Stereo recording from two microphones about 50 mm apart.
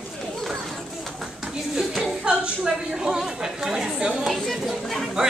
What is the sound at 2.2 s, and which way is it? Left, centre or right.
A woman's voice, centre.